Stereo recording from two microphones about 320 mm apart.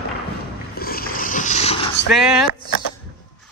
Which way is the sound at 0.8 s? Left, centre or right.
Left.